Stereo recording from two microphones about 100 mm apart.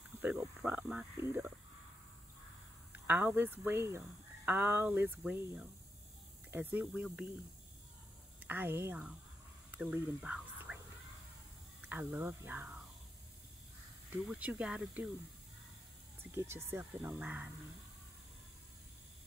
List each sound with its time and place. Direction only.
0.2 s speech: 15° right (ahead or behind)
2.9 s speech: 20° right (ahead or behind)
8.5 s speech: 20° right (ahead or behind)
10.2 s whispering: 5° right (ahead or behind)
12.1 s speech: 20° right (ahead or behind)
14.3 s speech: 10° right (ahead or behind)
16.3 s speech: 25° right (ahead or behind)